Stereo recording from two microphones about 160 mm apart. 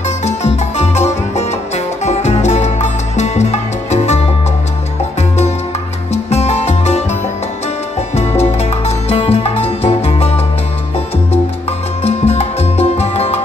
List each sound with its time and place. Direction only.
0.2 s music: 45° left (ahead or behind)
6.3 s music: 40° left (ahead or behind)
8.2 s music: 40° left (ahead or behind)
12.0 s music: 40° left (ahead or behind)